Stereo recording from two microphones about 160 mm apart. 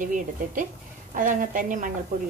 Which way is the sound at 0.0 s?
55° right (ahead or behind).